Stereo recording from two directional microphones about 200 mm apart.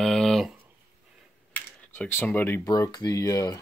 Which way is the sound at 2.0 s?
10° left (ahead or behind).